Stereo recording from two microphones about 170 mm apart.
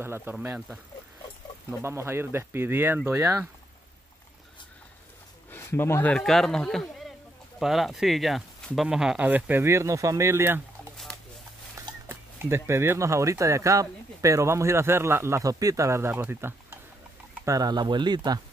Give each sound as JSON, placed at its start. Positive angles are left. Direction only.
{"t": 0.0, "sound": "speech", "side_deg": -15}
{"t": 5.5, "sound": "speech", "side_deg": 15}
{"t": 6.1, "sound": "speech", "side_deg": 0}
{"t": 12.1, "sound": "speech", "side_deg": -15}